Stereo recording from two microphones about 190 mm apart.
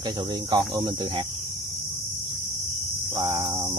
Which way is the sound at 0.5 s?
25° right (ahead or behind).